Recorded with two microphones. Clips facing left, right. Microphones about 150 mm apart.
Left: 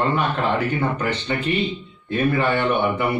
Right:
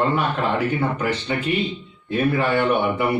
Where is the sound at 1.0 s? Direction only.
10° right (ahead or behind).